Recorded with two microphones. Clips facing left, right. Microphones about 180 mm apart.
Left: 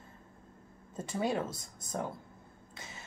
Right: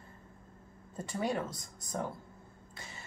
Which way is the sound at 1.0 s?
25° left (ahead or behind).